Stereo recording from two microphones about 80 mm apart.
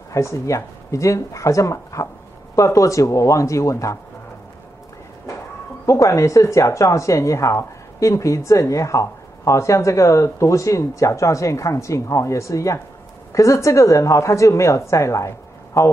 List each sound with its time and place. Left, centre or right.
0.1 s speech: left
5.9 s a woman's voice: left